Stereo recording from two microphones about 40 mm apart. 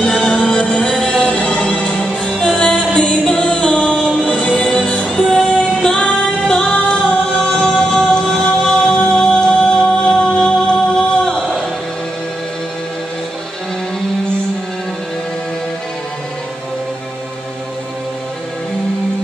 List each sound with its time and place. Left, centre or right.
0.0 s music: centre
2.3 s music: centre
2.7 s music: left
4.1 s music: centre
5.3 s female singing: left
6.4 s music: centre